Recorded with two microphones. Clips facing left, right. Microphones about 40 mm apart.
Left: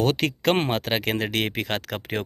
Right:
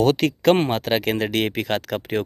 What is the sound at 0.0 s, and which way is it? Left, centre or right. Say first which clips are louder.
Speech: right 5 dB; centre.